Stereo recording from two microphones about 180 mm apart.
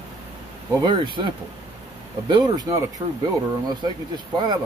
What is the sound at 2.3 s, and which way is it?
Speech, 20° right (ahead or behind).